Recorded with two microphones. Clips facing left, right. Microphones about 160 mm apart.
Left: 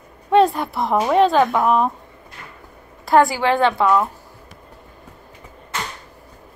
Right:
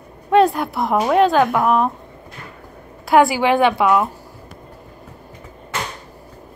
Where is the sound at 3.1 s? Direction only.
10° right (ahead or behind).